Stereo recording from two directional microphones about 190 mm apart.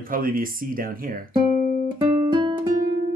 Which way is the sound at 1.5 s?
40° left (ahead or behind).